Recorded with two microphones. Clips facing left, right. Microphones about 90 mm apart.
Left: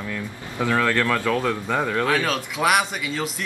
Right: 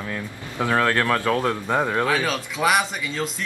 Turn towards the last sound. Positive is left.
turn(degrees=5)  # may be behind; listen again after turning